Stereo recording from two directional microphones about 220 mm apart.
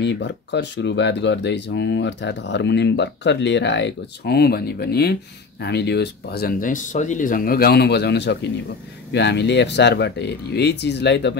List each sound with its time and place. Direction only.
0.0 s speech: 50° left (ahead or behind)